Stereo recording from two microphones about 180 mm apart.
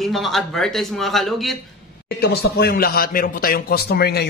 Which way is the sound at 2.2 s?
60° left (ahead or behind).